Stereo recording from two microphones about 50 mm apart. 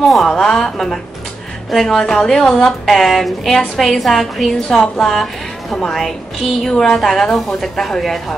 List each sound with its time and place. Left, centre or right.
0.0 s a woman's voice: centre